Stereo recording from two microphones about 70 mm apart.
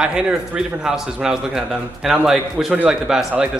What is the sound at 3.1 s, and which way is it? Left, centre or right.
Speech, centre.